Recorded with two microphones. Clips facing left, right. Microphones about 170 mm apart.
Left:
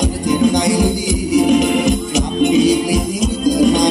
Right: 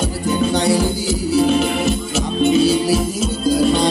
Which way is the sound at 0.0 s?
15° left (ahead or behind).